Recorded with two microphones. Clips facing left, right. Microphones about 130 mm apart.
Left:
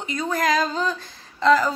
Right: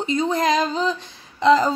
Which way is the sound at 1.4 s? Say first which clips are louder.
Right 2 dB; 20° right (ahead or behind).